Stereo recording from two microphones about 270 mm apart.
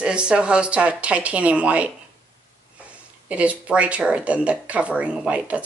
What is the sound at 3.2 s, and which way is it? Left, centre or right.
Speech, centre.